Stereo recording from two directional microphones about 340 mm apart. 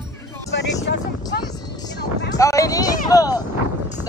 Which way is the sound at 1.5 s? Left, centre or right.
Centre.